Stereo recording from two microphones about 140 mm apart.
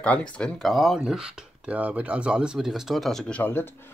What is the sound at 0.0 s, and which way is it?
Speech, 10° left (ahead or behind).